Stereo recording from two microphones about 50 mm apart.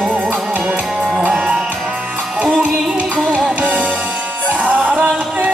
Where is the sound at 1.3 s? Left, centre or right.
Centre.